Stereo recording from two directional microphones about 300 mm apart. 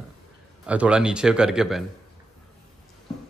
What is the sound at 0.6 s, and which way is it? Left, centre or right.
A man's voice, centre.